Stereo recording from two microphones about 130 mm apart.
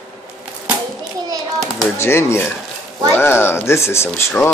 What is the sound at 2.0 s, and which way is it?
Speech, 20° left (ahead or behind).